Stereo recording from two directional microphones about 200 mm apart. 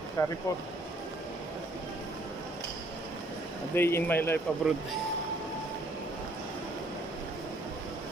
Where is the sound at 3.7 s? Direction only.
10° left (ahead or behind).